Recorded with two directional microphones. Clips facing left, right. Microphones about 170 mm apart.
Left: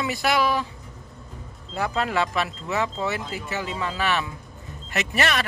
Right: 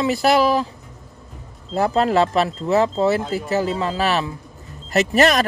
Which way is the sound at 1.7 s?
35° right (ahead or behind).